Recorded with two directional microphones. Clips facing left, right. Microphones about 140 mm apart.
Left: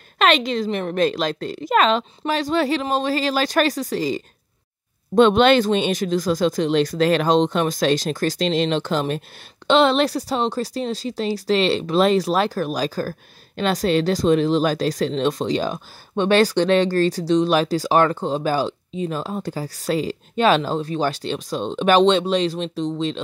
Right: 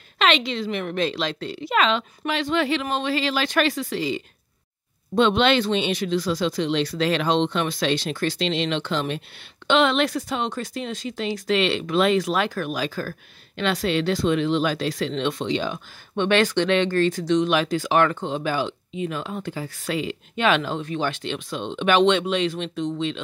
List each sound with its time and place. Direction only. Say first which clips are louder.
0.2 s speech: left 3 dB; 45° left (ahead or behind)